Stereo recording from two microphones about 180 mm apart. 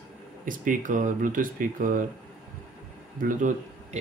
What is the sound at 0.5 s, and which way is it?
Speech, 45° right (ahead or behind).